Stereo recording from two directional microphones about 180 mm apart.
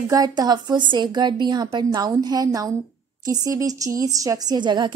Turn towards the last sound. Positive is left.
turn(degrees=-25)  # may be behind; listen again after turning